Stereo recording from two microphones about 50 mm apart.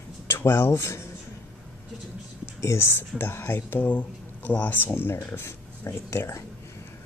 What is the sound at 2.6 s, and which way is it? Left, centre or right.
Speech, left.